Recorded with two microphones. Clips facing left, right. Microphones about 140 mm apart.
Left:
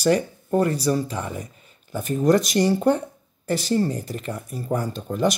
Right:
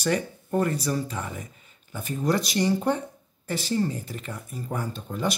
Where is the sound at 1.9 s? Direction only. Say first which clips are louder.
Left 7 dB; 45° left (ahead or behind).